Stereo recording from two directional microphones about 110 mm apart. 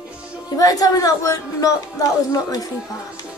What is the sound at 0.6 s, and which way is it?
Speech, 35° left (ahead or behind).